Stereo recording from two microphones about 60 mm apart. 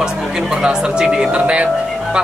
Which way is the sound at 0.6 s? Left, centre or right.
Centre.